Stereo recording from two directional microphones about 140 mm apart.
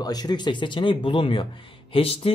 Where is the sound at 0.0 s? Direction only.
30° left (ahead or behind).